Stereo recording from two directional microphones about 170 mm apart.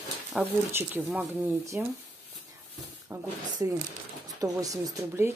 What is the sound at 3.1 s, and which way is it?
Speech, 15° right (ahead or behind).